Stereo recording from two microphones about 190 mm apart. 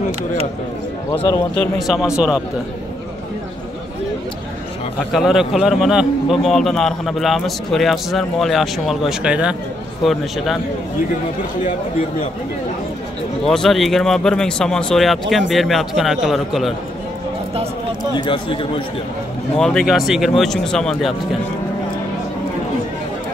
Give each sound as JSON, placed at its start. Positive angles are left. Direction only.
{"t": 1.5, "sound": "a man's voice", "side_deg": 0}
{"t": 5.1, "sound": "a man's voice", "side_deg": 0}
{"t": 13.5, "sound": "a man's voice", "side_deg": 0}
{"t": 18.1, "sound": "a man's voice", "side_deg": 25}
{"t": 19.5, "sound": "a man's voice", "side_deg": 5}